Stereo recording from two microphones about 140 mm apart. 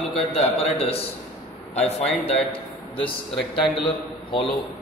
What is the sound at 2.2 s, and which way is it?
Speech, 45° left (ahead or behind).